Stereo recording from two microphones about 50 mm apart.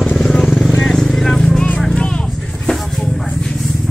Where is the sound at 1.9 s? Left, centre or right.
Left.